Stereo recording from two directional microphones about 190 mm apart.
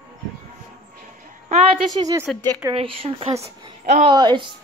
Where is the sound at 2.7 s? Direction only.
30° right (ahead or behind).